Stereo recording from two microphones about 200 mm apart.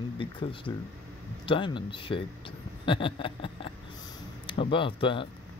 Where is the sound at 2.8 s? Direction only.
25° left (ahead or behind).